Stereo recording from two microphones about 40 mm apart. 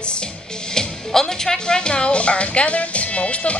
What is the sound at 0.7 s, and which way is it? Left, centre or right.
Speech, centre.